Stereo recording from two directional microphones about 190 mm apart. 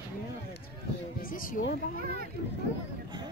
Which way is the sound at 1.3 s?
45° left (ahead or behind).